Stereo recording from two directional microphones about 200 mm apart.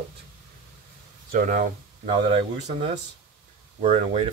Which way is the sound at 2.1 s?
30° right (ahead or behind).